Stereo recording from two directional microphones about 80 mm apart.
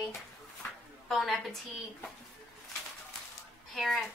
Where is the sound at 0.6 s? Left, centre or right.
Left.